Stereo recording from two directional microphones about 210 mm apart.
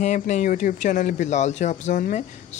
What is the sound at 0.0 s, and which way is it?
Speech, 35° left (ahead or behind).